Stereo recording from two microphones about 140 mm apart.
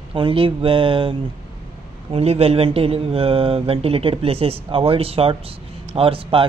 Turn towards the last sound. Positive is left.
turn(degrees=-40)  # may be behind; listen again after turning